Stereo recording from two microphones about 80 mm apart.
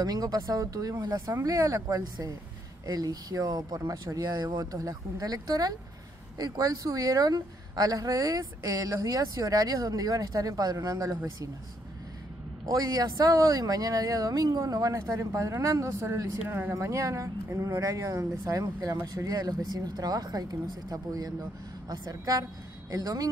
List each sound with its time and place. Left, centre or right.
0.0 s a woman's voice: right
4.7 s a woman's voice: right
12.6 s a woman's voice: right
16.7 s a woman's voice: right